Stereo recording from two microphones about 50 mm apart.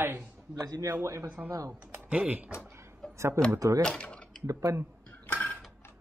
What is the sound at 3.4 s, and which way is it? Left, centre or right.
Speech, right.